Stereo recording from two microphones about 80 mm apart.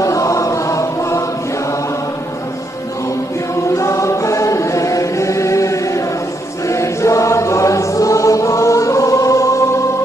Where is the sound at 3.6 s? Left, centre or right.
Left.